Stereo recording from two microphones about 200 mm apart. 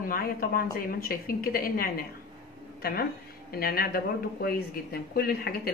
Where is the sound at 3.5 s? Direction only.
50° left (ahead or behind).